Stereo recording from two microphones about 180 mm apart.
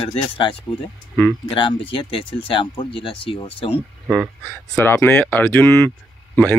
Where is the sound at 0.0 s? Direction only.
30° left (ahead or behind).